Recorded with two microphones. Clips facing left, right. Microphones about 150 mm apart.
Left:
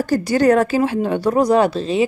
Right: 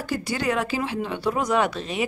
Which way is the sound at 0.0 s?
40° left (ahead or behind).